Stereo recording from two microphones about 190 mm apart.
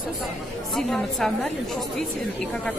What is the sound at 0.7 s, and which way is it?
Speech, centre (ahead or behind).